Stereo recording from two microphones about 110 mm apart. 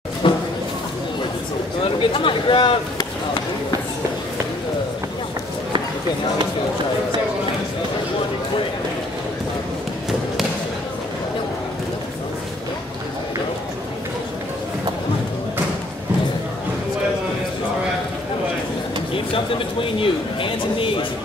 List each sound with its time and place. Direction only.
0.2 s a sound: 50° left (ahead or behind)
1.9 s speech: 50° left (ahead or behind)
20.0 s speech: 50° left (ahead or behind)